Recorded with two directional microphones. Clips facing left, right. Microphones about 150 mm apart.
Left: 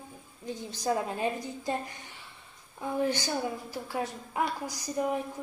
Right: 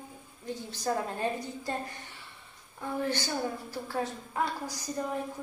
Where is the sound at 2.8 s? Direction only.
15° left (ahead or behind).